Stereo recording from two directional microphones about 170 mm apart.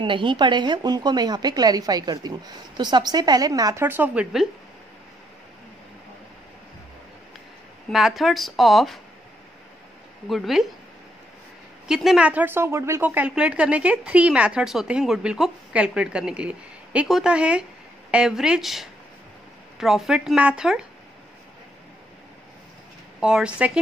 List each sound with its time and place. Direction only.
0.0 s a woman's voice: 30° right (ahead or behind)
3.8 s speech: 10° right (ahead or behind)
7.9 s speech: centre (ahead or behind)
10.2 s speech: centre (ahead or behind)
11.9 s speech: 5° right (ahead or behind)
23.2 s speech: 5° right (ahead or behind)